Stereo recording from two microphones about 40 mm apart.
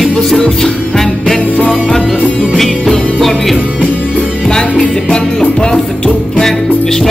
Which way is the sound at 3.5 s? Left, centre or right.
Right.